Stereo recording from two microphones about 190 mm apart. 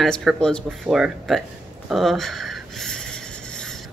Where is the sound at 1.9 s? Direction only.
Centre (ahead or behind).